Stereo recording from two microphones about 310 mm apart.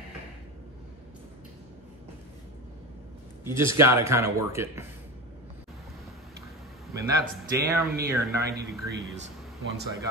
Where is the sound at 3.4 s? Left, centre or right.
Centre.